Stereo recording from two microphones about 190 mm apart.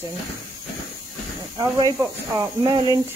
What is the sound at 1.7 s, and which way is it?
Speech, 15° right (ahead or behind).